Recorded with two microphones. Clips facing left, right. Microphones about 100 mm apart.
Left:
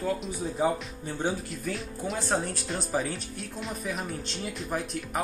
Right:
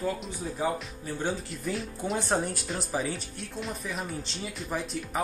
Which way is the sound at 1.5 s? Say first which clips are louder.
Right 1 dB; centre (ahead or behind).